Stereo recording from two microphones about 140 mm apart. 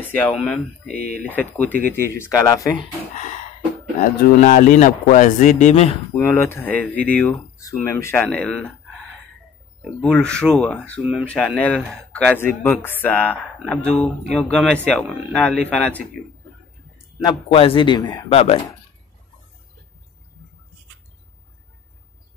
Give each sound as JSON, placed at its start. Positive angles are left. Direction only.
{"t": 0.0, "sound": "speech", "side_deg": 10}
{"t": 3.2, "sound": "a sound", "side_deg": 60}
{"t": 4.0, "sound": "a man's voice", "side_deg": 85}
{"t": 6.1, "sound": "speech", "side_deg": 15}
{"t": 17.2, "sound": "a man's voice", "side_deg": 35}